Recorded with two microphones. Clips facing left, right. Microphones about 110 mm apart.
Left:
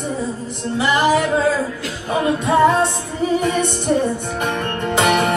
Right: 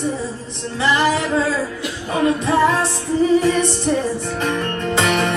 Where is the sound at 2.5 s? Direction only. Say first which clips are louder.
Left 4 dB; 25° left (ahead or behind).